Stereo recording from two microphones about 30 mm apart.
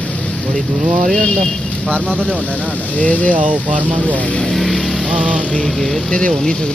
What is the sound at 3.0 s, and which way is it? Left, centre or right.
Speech, left.